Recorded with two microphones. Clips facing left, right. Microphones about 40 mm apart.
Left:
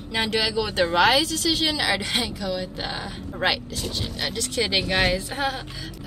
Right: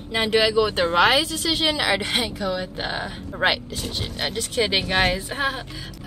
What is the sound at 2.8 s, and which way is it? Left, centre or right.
Speech, centre.